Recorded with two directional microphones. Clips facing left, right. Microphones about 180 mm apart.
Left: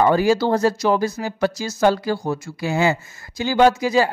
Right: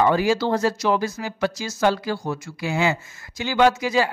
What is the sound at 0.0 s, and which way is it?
Speech, 40° left (ahead or behind).